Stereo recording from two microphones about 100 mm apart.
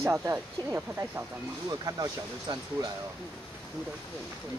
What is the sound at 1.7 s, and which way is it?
Speech, 40° right (ahead or behind).